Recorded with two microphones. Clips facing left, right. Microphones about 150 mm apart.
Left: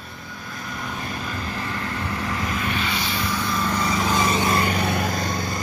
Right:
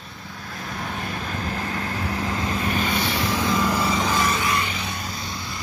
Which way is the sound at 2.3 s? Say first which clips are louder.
Right 1 dB; 25° right (ahead or behind).